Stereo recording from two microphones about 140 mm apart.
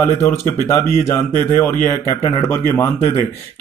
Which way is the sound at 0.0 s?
15° left (ahead or behind).